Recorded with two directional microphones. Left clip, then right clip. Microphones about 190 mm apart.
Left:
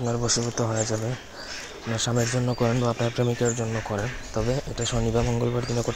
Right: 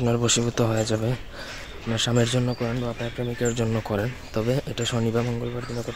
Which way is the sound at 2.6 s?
10° left (ahead or behind).